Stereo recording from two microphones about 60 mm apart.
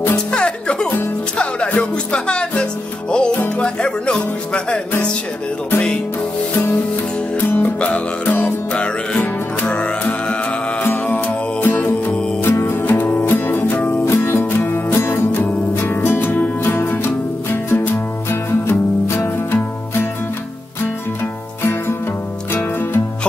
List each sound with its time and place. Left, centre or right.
0.3 s music: centre
7.3 s music: left
8.7 s music: centre; by 13.0 s left
13.0 s music: left
15.8 s music: left